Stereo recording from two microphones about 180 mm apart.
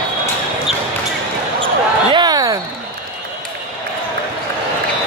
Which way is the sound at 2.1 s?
25° right (ahead or behind).